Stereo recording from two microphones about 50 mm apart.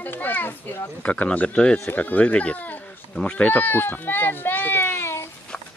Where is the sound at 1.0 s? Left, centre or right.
Left.